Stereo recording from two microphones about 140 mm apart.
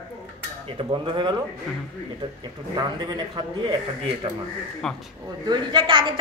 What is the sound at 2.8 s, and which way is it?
Speech, 30° right (ahead or behind).